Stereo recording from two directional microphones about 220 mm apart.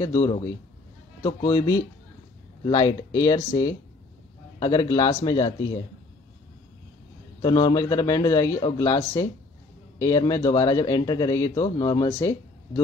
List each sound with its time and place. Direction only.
0.0 s a man's voice: 15° left (ahead or behind)
7.4 s a man's voice: 20° left (ahead or behind)